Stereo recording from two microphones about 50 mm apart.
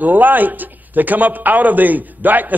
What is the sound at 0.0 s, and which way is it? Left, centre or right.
A man's voice, right.